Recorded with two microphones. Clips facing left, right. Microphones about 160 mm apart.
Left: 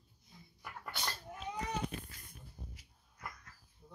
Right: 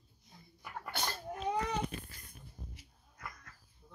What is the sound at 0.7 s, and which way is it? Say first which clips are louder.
Sneeze: right 4 dB; 55° right (ahead or behind).